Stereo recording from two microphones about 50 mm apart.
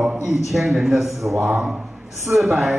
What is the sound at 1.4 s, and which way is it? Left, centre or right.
Speech, right.